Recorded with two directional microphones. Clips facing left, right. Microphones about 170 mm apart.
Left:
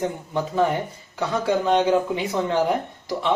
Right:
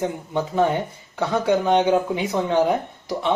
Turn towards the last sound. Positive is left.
turn(degrees=-20)  # may be behind; listen again after turning